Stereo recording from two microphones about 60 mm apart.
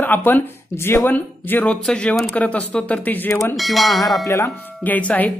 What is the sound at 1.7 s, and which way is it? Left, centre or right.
Speech, centre.